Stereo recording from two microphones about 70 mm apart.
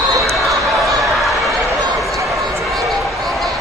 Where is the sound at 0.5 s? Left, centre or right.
Centre.